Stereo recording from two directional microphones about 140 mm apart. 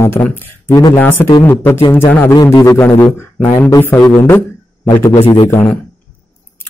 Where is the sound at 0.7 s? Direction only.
25° left (ahead or behind).